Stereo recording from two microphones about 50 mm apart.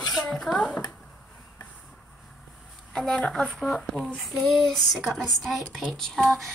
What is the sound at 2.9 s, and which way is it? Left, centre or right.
Speech, centre.